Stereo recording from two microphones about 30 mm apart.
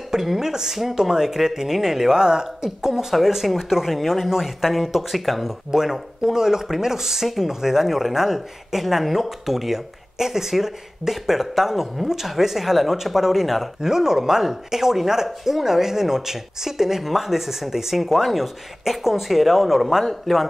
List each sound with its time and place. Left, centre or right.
0.1 s speech: centre
2.9 s speech: centre
5.7 s speech: centre
13.7 s speech: centre